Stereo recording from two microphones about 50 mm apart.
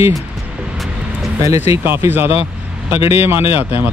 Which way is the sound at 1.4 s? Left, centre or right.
Right.